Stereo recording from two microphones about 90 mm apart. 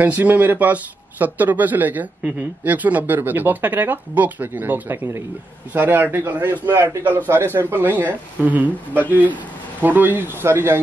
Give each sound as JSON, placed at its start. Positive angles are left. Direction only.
{"t": 0.0, "sound": "speech", "side_deg": -20}